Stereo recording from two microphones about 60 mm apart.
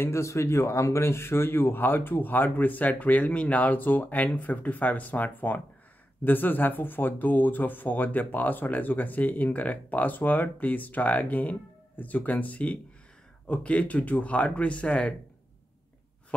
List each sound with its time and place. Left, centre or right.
0.0 s speech: left; by 15.1 s centre